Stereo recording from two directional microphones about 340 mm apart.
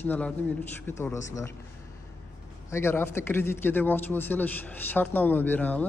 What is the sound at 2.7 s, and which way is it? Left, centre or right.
A man's voice, centre.